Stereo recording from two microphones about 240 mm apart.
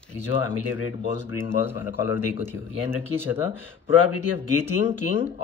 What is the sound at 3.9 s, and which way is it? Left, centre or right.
Speech, left.